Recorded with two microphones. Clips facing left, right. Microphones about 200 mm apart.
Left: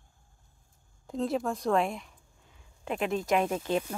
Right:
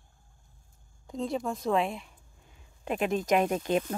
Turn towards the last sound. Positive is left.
turn(degrees=-15)  # may be behind; listen again after turning